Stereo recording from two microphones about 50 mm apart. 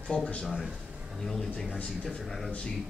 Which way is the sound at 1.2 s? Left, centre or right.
Centre.